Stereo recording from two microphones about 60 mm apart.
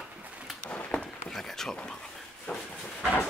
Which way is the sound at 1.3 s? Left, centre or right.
Centre.